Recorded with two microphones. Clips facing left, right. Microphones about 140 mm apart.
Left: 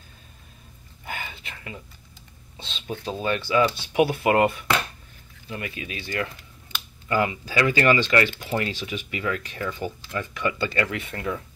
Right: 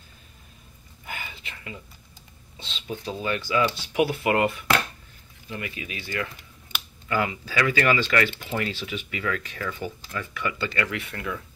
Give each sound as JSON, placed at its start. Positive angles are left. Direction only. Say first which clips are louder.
{"t": 1.0, "sound": "whispering", "louder": "left 3 dB", "side_deg": 30}
{"t": 2.5, "sound": "speech", "louder": "left 1 dB", "side_deg": 30}
{"t": 5.5, "sound": "speech", "louder": "left 1 dB", "side_deg": 30}
{"t": 7.1, "sound": "speech", "louder": "left 2 dB", "side_deg": 25}
{"t": 8.7, "sound": "speech", "louder": "left 1 dB", "side_deg": 15}